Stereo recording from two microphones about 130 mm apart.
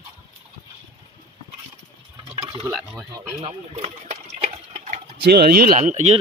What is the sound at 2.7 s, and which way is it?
Stir, 5° right (ahead or behind).